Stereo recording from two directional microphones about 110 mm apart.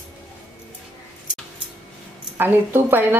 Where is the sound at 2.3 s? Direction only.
20° right (ahead or behind).